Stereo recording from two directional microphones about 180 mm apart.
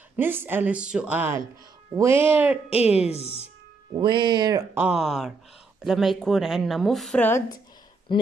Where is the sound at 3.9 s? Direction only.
25° right (ahead or behind); by 7.5 s 15° left (ahead or behind).